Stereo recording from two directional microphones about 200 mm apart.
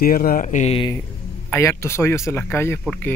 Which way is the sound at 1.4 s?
15° left (ahead or behind).